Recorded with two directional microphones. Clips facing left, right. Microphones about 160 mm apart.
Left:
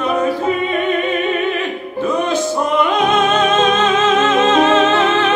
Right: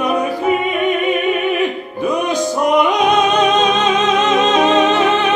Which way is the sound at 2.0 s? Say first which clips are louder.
Even; 15° right (ahead or behind).